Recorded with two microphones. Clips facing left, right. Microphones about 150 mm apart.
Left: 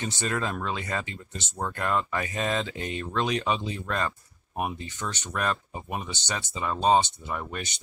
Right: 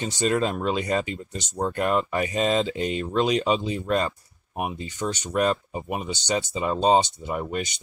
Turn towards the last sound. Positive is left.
turn(degrees=-15)  # may be behind; listen again after turning